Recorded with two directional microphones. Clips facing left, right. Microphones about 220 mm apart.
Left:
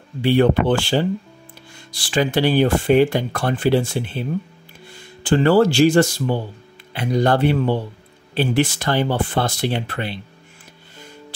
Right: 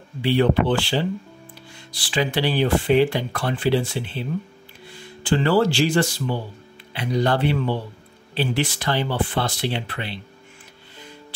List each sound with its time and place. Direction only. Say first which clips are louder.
0.2 s speech: left 3 dB; 50° left (ahead or behind)